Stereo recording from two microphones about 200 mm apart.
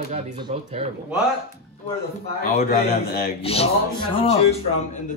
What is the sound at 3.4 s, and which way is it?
Speech, 30° left (ahead or behind).